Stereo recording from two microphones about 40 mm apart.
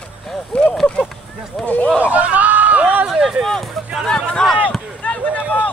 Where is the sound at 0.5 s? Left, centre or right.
Left.